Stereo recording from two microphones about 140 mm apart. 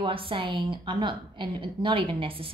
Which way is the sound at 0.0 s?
40° right (ahead or behind).